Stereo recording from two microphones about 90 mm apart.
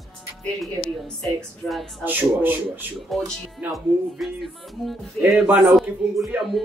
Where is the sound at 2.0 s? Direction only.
20° right (ahead or behind).